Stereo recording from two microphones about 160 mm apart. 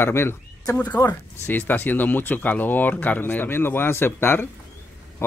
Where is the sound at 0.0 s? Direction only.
15° left (ahead or behind).